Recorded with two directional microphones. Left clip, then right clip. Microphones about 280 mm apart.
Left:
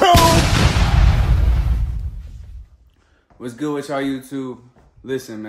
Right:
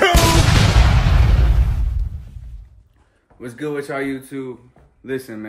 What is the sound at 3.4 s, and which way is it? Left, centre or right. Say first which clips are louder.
Speech: left 1 dB; centre.